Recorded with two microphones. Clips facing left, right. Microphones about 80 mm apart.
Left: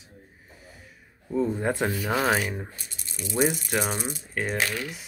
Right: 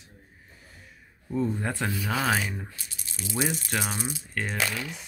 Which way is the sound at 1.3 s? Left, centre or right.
Centre.